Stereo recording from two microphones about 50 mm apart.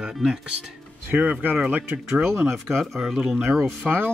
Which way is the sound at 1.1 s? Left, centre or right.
Right.